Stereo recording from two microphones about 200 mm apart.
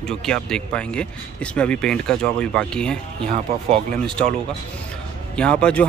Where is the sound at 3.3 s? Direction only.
35° right (ahead or behind).